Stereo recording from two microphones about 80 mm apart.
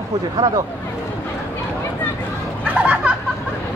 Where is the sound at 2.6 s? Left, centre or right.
Centre.